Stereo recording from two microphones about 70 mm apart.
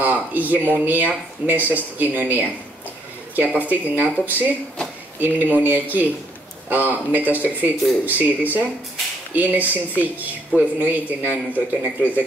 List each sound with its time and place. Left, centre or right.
0.0 s speech: right